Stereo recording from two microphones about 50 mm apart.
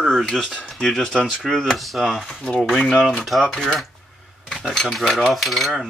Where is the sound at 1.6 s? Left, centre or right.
Centre.